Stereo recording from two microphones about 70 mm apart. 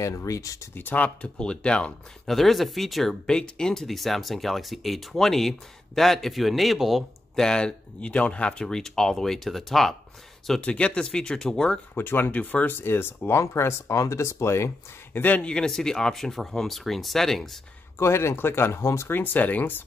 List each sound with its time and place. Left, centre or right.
0.0 s speech: left
0.7 s speech: left
2.2 s speech: centre
7.4 s speech: centre
10.6 s speech: centre
11.9 s speech: left
15.1 s speech: left
15.4 s speech: centre
17.9 s speech: left